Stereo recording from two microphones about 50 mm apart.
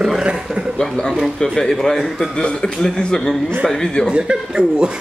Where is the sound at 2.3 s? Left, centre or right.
Centre.